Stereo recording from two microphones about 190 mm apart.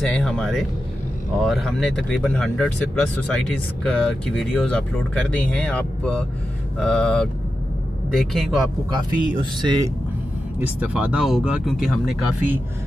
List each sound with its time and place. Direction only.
0.0 s speech: 5° left (ahead or behind)
8.9 s speech: 20° right (ahead or behind)
10.9 s speech: 5° right (ahead or behind)